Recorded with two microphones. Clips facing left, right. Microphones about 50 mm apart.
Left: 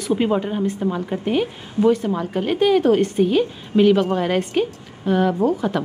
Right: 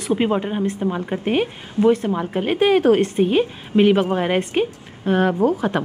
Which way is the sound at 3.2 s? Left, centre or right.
Right.